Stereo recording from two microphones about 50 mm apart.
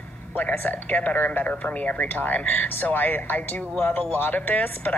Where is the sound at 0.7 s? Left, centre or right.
Left.